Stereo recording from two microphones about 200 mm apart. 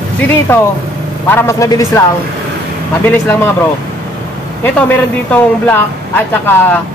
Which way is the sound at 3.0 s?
10° left (ahead or behind).